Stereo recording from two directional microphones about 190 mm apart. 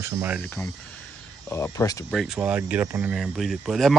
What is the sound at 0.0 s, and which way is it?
Speech, 10° right (ahead or behind).